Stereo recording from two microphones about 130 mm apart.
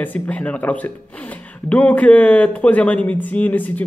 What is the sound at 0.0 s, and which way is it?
Speech, 10° left (ahead or behind).